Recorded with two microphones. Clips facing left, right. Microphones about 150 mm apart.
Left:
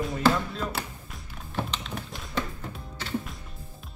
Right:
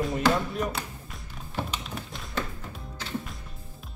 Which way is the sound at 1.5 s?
5° right (ahead or behind).